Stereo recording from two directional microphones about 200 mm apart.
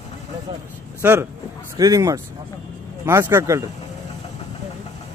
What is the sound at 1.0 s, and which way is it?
Speech, 10° right (ahead or behind).